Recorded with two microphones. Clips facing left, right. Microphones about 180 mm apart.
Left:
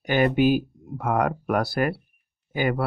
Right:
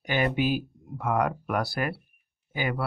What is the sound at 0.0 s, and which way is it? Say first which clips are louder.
Speech: left 6 dB; 50° left (ahead or behind).